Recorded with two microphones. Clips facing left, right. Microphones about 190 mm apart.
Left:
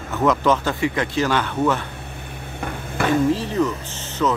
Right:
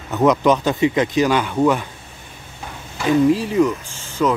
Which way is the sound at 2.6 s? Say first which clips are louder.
Left 4 dB; 60° left (ahead or behind).